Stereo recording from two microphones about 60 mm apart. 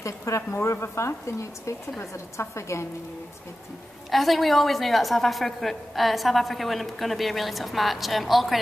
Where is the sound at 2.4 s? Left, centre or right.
Left.